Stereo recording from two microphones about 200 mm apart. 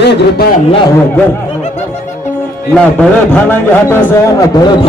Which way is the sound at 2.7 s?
5° left (ahead or behind).